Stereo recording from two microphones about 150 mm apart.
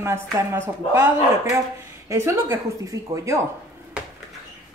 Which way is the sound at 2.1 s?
15° right (ahead or behind).